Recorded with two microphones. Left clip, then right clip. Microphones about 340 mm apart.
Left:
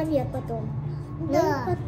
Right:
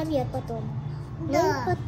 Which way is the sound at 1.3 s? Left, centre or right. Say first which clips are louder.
Even; right.